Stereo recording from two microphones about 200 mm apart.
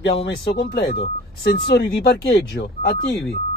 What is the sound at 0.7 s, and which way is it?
Speech, 50° left (ahead or behind).